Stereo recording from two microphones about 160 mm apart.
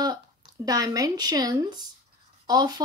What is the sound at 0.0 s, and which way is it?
Speech, 25° right (ahead or behind).